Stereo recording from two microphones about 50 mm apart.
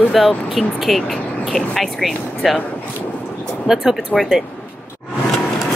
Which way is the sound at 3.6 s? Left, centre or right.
Centre.